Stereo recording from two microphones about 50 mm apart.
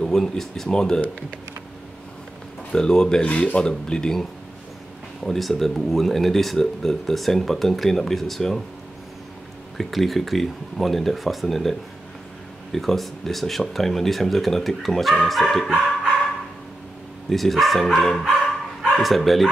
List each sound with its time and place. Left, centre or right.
0.0 s speech: centre
2.7 s speech: centre
3.3 s speech: left; by 8.6 s centre
9.8 s speech: centre
12.7 s speech: centre
17.3 s speech: centre